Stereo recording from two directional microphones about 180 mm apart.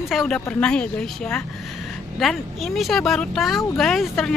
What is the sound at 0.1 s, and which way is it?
Speech, centre (ahead or behind).